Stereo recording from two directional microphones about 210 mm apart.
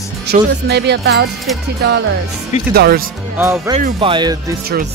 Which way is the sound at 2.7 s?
50° right (ahead or behind).